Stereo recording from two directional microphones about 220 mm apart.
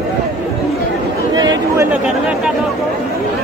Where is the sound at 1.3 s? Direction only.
20° right (ahead or behind).